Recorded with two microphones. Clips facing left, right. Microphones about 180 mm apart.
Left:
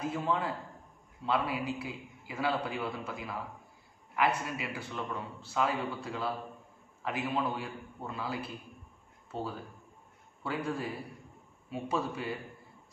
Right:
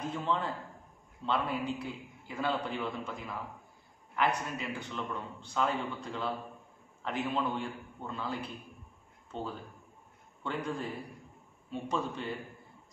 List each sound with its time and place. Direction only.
0.0 s a man's voice: 5° left (ahead or behind)